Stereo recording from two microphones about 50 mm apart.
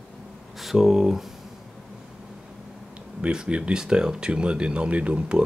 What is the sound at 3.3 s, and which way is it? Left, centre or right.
Speech, centre.